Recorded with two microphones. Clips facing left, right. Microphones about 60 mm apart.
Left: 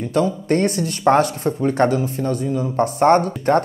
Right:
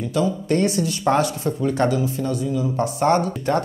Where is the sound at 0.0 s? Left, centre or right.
Left.